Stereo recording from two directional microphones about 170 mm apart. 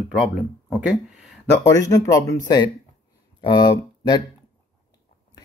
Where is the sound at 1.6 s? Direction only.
20° left (ahead or behind).